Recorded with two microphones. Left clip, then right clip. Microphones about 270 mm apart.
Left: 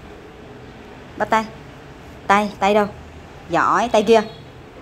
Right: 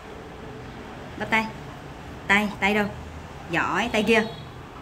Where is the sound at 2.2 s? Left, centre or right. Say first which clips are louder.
Left 5 dB; centre.